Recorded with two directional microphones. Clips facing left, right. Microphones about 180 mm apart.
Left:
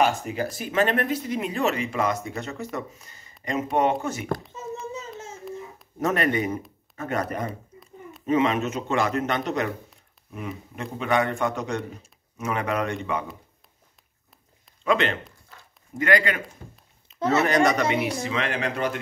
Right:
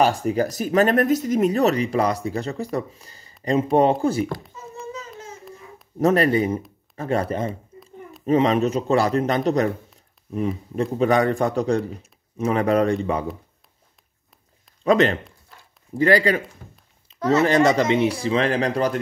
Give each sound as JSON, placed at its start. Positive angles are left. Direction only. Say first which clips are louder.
{"t": 0.0, "sound": "speech", "louder": "right 4 dB", "side_deg": -35}
{"t": 5.9, "sound": "speech", "louder": "right 6 dB", "side_deg": -35}
{"t": 14.9, "sound": "speech", "louder": "right 6 dB", "side_deg": -40}